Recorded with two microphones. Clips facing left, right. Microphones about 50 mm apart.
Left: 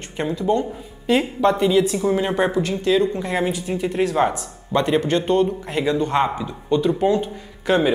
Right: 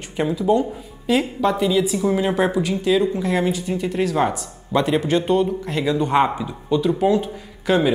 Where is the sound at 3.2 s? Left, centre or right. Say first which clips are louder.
Right 2 dB; centre.